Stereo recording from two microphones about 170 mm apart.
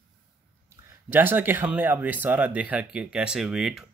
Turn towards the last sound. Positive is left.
turn(degrees=0)  # may be behind; listen again after turning